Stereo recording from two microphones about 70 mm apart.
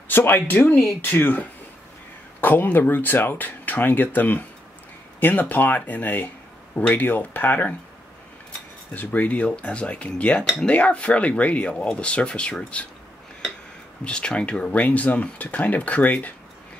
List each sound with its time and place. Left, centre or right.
0.1 s speech: left
8.9 s speech: left
14.0 s speech: centre